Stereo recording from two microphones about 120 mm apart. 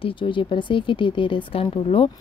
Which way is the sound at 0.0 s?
45° left (ahead or behind).